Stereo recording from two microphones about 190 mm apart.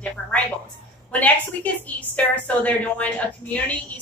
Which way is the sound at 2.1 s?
10° left (ahead or behind).